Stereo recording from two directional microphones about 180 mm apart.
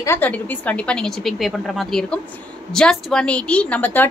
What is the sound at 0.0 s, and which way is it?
A woman's voice, 10° left (ahead or behind).